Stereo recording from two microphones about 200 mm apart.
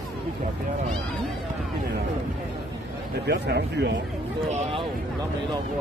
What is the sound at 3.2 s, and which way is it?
Speech, 55° right (ahead or behind).